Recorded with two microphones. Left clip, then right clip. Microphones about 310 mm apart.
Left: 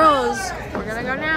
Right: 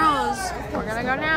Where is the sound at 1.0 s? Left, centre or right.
Centre.